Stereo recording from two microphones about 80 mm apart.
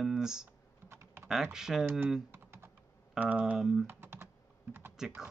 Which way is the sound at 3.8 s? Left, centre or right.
Right.